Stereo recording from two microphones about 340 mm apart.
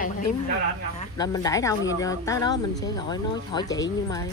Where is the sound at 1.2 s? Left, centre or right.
Centre.